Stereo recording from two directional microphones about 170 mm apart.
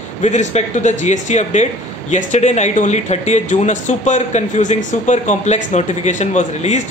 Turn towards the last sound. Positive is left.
turn(degrees=40)  # may be behind; listen again after turning